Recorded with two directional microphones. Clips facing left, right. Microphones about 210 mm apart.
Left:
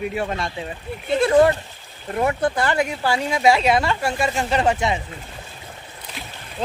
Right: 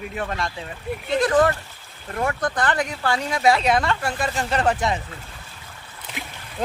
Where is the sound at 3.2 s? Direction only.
25° left (ahead or behind).